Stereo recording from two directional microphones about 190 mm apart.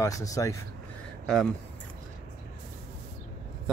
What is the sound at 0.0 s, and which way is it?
Speech, 15° left (ahead or behind).